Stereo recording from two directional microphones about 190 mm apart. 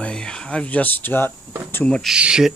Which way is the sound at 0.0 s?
5° left (ahead or behind).